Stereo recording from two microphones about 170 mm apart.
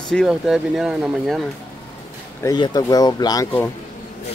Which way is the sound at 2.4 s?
25° left (ahead or behind).